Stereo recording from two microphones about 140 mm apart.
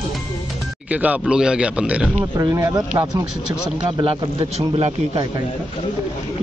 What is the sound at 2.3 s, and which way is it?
Speech, 20° right (ahead or behind).